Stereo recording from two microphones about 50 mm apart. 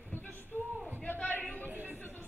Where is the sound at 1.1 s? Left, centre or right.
Left.